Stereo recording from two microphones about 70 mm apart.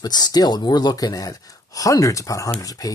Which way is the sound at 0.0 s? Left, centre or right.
Left.